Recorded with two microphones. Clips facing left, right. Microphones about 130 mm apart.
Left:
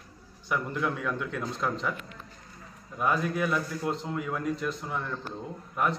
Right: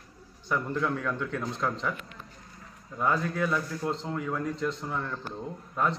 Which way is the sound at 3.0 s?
15° left (ahead or behind).